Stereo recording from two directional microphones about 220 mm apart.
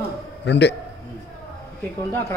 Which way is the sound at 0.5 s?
50° left (ahead or behind).